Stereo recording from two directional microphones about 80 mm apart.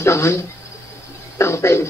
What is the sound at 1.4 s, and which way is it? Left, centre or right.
Speech, left.